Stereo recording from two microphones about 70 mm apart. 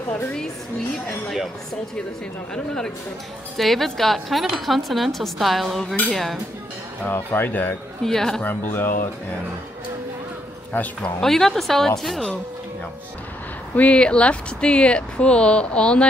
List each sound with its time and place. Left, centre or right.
0.9 s speech: centre
2.5 s speech: centre
7.1 s speech: left
8.0 s speech: centre
8.4 s speech: left
11.0 s speech: centre
13.7 s speech: centre